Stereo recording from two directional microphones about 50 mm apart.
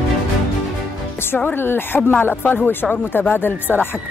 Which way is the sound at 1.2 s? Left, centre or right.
Left.